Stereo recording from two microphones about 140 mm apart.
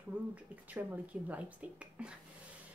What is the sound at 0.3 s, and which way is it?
A woman's voice, 10° right (ahead or behind).